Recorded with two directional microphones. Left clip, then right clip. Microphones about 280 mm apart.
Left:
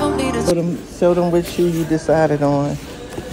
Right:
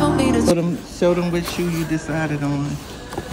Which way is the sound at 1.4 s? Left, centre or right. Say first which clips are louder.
Left 6 dB; centre.